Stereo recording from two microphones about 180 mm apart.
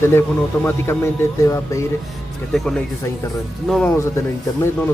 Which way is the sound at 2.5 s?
Centre (ahead or behind).